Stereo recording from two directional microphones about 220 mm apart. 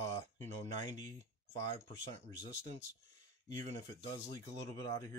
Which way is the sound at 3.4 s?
20° left (ahead or behind).